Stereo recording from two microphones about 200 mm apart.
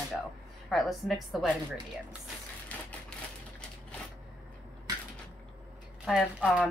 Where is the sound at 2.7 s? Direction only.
10° left (ahead or behind).